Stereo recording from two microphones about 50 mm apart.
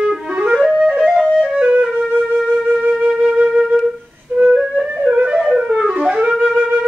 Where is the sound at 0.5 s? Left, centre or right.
Centre.